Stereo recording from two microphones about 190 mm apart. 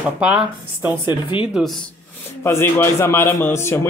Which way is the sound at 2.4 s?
15° left (ahead or behind).